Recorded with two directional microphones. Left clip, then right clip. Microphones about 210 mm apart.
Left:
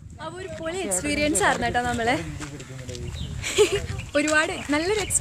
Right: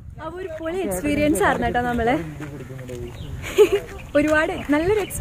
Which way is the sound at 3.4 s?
5° left (ahead or behind).